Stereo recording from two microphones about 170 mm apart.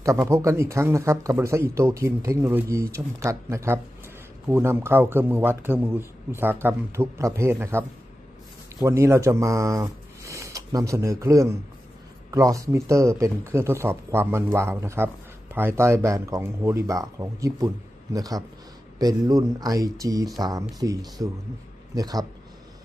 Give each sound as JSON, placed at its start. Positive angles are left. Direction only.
{"t": 0.0, "sound": "speech", "side_deg": -15}
{"t": 8.8, "sound": "a man's voice", "side_deg": -15}